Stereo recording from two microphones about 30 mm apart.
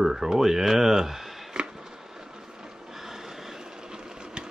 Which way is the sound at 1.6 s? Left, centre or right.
Right.